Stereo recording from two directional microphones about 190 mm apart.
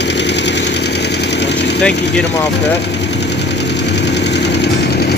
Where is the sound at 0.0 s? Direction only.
65° left (ahead or behind).